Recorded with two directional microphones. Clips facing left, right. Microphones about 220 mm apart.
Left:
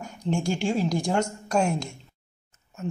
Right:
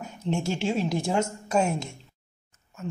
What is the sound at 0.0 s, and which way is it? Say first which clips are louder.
A woman's voice: left 1 dB; 5° right (ahead or behind).